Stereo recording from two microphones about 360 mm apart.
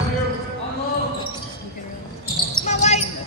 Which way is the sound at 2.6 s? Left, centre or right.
Centre.